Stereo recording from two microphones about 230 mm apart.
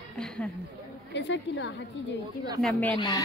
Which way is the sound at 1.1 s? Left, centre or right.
Left.